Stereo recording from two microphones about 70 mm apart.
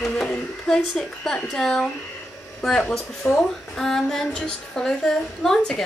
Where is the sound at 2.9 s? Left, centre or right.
Centre.